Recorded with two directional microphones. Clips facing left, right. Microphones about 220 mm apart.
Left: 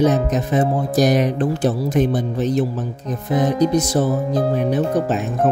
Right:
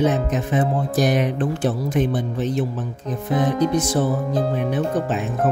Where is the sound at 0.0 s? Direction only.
40° left (ahead or behind).